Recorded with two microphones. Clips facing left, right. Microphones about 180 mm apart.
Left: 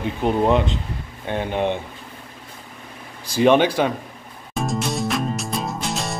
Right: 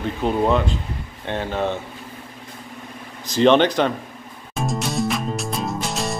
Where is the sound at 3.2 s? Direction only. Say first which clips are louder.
Right 1 dB; 10° left (ahead or behind).